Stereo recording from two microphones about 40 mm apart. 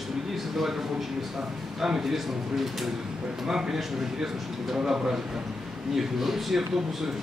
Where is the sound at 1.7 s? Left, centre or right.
Centre.